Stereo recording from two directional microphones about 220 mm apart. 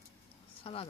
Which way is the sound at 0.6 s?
25° left (ahead or behind).